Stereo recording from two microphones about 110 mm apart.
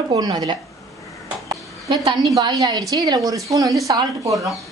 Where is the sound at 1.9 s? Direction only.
35° right (ahead or behind).